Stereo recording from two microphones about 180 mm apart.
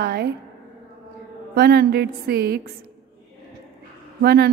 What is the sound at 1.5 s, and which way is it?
A woman's voice, 65° right (ahead or behind).